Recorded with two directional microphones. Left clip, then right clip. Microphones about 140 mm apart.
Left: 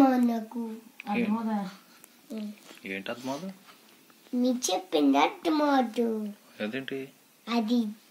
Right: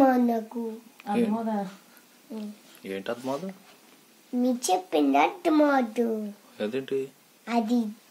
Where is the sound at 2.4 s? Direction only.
45° right (ahead or behind).